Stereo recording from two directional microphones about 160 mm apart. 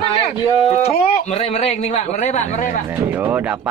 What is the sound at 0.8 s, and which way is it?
Speech, 40° left (ahead or behind).